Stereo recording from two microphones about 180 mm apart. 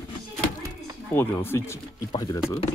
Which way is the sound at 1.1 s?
15° left (ahead or behind).